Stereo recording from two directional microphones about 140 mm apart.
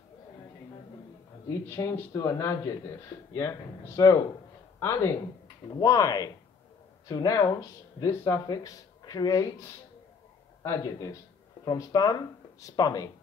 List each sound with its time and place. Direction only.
1.7 s speech: 20° left (ahead or behind)